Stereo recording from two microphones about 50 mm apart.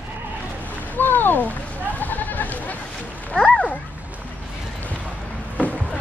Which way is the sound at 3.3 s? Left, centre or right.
Left.